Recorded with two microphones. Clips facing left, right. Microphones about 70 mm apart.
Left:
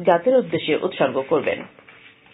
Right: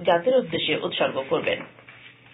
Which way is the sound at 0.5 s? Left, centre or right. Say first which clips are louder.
Left 5 dB; left.